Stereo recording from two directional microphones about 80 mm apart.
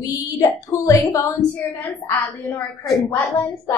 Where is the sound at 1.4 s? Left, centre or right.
Centre.